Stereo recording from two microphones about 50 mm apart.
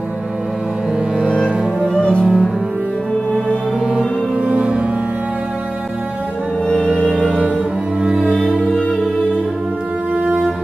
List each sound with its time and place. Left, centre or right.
2.0 s cello: centre
2.2 s cello: centre
4.5 s music: right
6.7 s music: centre
8.0 s music: centre
10.2 s music: right